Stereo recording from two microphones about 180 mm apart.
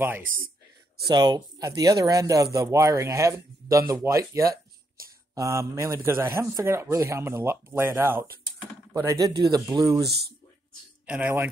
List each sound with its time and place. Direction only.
1.0 s a man's voice: 25° right (ahead or behind)
11.1 s a man's voice: 10° right (ahead or behind)